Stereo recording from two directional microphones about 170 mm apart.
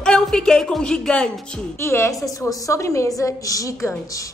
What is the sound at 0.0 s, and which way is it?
Speech, 5° left (ahead or behind).